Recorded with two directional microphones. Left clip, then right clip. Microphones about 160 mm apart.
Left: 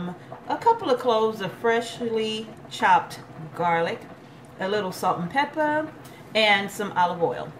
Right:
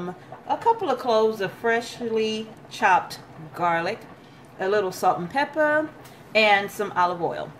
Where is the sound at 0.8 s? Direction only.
35° right (ahead or behind).